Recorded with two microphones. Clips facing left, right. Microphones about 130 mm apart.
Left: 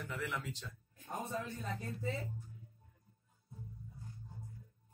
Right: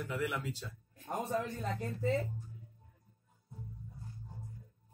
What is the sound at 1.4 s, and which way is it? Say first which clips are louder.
Speech: right 5 dB; 70° right (ahead or behind).